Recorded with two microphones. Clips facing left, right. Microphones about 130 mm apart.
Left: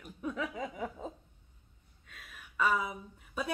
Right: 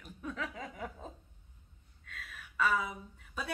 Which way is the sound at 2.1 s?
10° left (ahead or behind).